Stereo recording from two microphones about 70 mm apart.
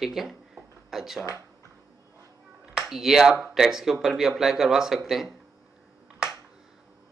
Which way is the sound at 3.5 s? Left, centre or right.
Centre.